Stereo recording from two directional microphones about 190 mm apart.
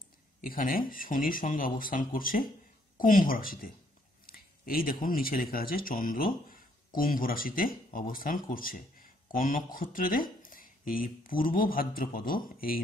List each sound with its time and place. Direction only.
0.4 s speech: 50° left (ahead or behind)